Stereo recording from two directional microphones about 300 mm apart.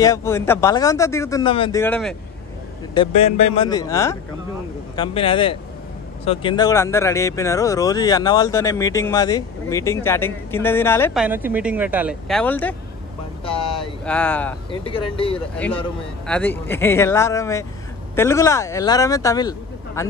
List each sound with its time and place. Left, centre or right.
0.0 s speech: centre
2.9 s speech: centre
11.2 s speech: centre
14.0 s speech: centre
14.7 s speech: centre
15.5 s speech: centre